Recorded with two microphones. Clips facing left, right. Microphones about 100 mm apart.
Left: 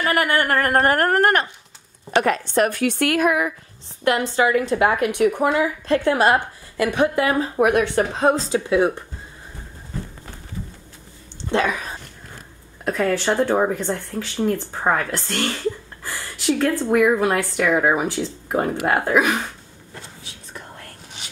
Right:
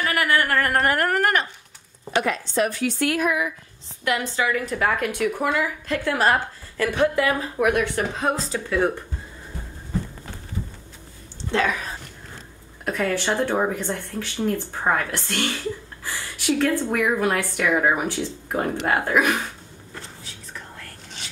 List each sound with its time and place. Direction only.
0.0 s a woman's voice: 30° left (ahead or behind)
2.2 s a woman's voice: 55° left (ahead or behind)
4.0 s a woman's voice: 35° left (ahead or behind)
4.7 s a woman's voice: 15° left (ahead or behind)
12.8 s a woman's voice: centre (ahead or behind)
16.5 s speech: 10° left (ahead or behind)